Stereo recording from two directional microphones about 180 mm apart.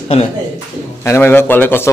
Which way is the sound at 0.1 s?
35° left (ahead or behind).